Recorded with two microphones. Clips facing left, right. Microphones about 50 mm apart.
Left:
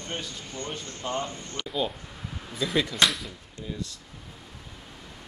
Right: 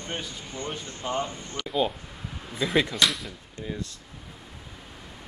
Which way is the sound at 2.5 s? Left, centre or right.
Right.